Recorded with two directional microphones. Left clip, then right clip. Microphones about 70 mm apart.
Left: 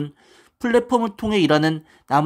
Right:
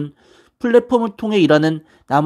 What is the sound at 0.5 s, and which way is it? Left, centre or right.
Speech, right.